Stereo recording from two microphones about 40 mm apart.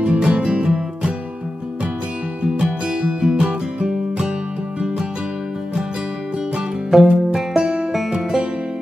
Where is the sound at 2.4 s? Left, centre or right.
Right.